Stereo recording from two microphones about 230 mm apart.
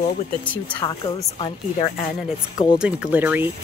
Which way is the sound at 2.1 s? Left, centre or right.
Centre.